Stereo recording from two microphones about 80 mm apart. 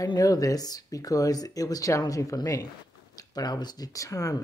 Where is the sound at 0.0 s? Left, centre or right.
Left.